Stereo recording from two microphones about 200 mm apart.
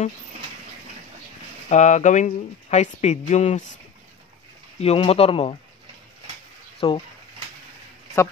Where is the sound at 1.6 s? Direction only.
35° left (ahead or behind).